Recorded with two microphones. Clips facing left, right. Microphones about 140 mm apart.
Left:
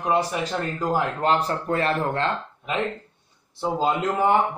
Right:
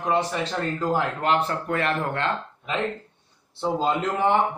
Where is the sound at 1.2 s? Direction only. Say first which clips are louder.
Left 1 dB; 35° left (ahead or behind).